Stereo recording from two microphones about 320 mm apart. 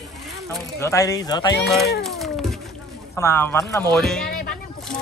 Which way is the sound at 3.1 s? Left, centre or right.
Centre.